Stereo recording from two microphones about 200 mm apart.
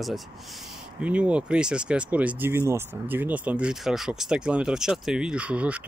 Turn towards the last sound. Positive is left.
turn(degrees=-5)  # may be behind; listen again after turning